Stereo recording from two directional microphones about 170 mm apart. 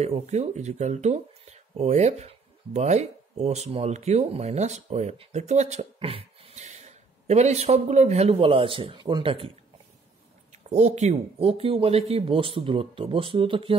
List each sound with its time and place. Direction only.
0.0 s speech: 40° right (ahead or behind)
10.7 s speech: 40° right (ahead or behind)